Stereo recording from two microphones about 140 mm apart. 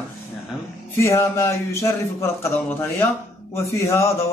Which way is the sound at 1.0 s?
20° left (ahead or behind).